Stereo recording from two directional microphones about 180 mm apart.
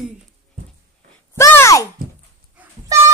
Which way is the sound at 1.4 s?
15° left (ahead or behind).